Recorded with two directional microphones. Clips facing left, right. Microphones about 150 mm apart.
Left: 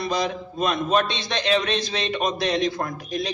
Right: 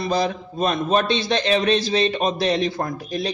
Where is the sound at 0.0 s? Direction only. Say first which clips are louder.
Right 3 dB; 30° right (ahead or behind).